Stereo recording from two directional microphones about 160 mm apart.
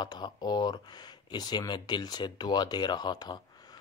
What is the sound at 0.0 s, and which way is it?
Speech, 25° left (ahead or behind).